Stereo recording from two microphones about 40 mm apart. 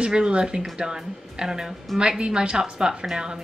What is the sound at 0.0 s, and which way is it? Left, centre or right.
A woman's voice, right.